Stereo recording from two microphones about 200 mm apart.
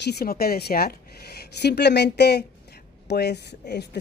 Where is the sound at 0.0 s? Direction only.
50° left (ahead or behind).